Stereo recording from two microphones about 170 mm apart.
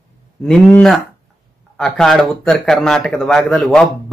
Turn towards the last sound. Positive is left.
turn(degrees=0)  # may be behind; listen again after turning